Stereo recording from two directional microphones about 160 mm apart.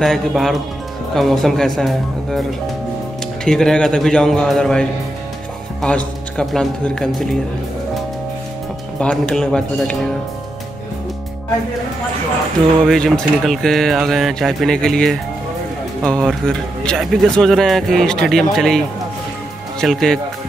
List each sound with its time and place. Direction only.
0.0 s speech: centre (ahead or behind)
3.4 s speech: 5° left (ahead or behind)
9.0 s speech: 5° left (ahead or behind)
12.8 s speech: 5° left (ahead or behind)